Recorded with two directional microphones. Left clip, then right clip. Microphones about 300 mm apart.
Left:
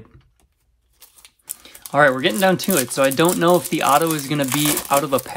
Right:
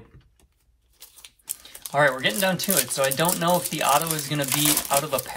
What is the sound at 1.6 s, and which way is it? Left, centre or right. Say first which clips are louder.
Speech: left 5 dB; centre.